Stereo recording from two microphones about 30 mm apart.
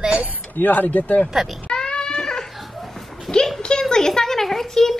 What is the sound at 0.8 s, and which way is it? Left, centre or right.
Speech, left.